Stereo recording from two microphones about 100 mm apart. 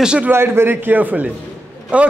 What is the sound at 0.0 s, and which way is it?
Speech, 10° right (ahead or behind).